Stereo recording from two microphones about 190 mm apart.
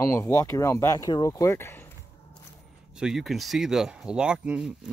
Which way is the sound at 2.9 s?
Centre (ahead or behind).